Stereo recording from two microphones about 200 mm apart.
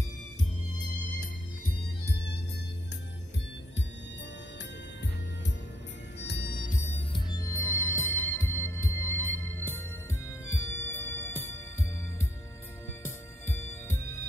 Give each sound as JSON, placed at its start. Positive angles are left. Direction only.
{"t": 6.2, "sound": "music", "side_deg": 50}
{"t": 7.2, "sound": "music", "side_deg": 15}
{"t": 13.0, "sound": "music", "side_deg": 10}